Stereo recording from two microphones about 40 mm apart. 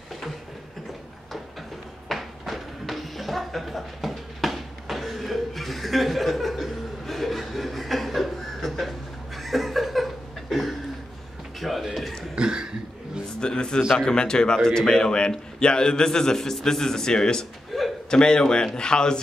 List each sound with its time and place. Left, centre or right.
2.0 s music: centre
9.4 s a sound: centre
12.4 s cough: centre
13.4 s a man's voice: centre
17.7 s a sound: centre
18.1 s a man's voice: centre